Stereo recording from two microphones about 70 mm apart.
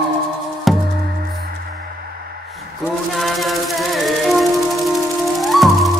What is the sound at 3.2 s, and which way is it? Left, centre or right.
Music, centre.